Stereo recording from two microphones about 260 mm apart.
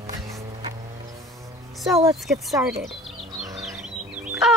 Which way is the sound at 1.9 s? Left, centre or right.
Centre.